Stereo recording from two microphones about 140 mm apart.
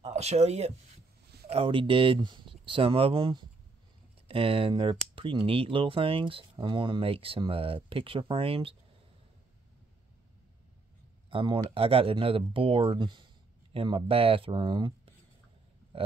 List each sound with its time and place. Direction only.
0.0 s speech: 50° right (ahead or behind)
1.5 s speech: 40° right (ahead or behind)
11.2 s speech: 40° right (ahead or behind)
15.9 s a sound: 40° right (ahead or behind)